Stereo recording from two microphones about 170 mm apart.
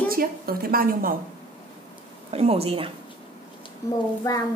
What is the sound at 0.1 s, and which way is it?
A woman's voice, 60° right (ahead or behind).